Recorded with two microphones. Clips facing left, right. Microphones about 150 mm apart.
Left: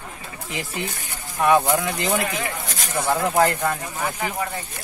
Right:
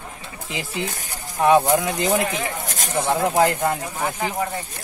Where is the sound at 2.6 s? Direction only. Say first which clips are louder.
Right 2 dB; 45° right (ahead or behind).